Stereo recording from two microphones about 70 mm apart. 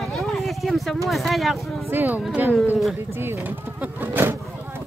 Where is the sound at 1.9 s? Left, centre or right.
Right.